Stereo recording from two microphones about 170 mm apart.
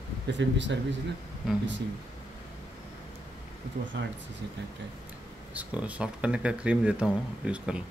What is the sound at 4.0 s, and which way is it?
Speech, 90° right.